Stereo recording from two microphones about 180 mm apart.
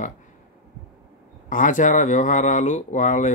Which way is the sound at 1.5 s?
45° left (ahead or behind).